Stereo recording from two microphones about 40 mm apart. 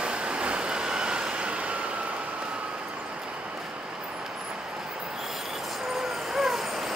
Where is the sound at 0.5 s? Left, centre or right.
Centre.